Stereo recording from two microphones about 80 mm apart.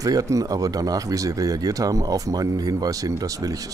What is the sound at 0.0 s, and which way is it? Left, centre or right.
Speech, right.